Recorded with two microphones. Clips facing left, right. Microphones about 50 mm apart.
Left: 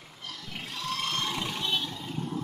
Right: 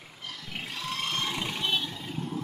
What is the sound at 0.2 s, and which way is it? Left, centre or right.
Roaring cats, centre.